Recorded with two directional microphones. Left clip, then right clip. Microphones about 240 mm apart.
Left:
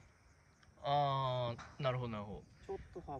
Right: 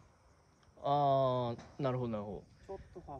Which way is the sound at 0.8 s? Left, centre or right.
Right.